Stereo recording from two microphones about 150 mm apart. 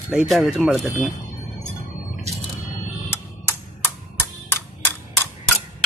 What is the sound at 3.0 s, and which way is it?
Music, 15° left (ahead or behind).